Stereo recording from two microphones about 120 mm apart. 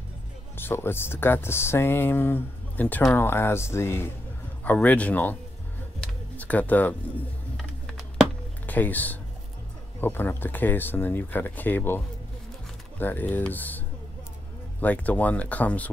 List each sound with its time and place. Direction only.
0.6 s speech: 20° left (ahead or behind)
7.5 s a sound: centre (ahead or behind)
8.6 s speech: 15° left (ahead or behind)
13.0 s speech: 15° left (ahead or behind)